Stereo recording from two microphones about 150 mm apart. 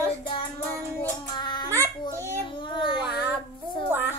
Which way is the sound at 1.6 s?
20° right (ahead or behind).